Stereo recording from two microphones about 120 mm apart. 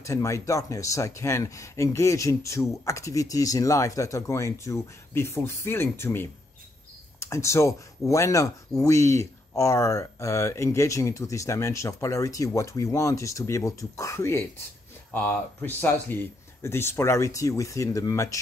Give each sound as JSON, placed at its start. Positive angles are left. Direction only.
{"t": 0.0, "sound": "speech", "side_deg": 25}